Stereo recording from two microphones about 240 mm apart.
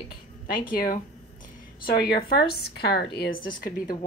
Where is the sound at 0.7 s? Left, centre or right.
Left.